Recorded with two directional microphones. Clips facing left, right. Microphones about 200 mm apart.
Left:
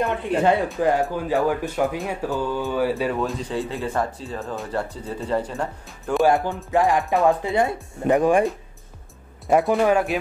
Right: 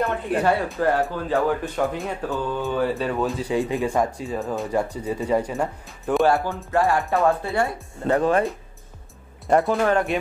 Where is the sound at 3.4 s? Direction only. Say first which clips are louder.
Right 4 dB; 15° right (ahead or behind).